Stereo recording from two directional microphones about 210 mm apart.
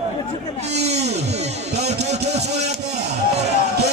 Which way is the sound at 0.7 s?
30° right (ahead or behind).